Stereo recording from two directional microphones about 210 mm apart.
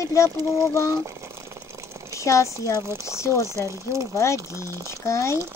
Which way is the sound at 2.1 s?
15° left (ahead or behind).